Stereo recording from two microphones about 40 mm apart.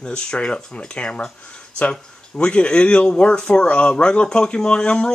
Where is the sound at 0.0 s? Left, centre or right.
Left.